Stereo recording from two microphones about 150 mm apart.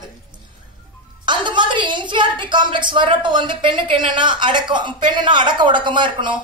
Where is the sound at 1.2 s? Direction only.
30° right (ahead or behind).